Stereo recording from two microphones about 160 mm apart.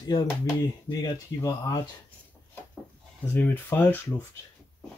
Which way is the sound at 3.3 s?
15° left (ahead or behind).